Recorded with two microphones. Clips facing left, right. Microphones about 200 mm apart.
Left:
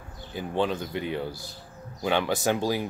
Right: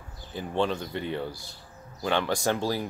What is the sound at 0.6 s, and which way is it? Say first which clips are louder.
Speech: left 1 dB; 5° left (ahead or behind).